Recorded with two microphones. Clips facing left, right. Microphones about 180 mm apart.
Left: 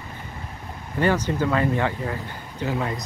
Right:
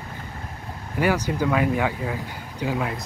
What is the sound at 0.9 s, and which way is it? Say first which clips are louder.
Speech: left 1 dB; 10° right (ahead or behind).